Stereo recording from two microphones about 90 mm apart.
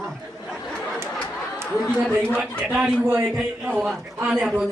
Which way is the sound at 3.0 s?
20° right (ahead or behind).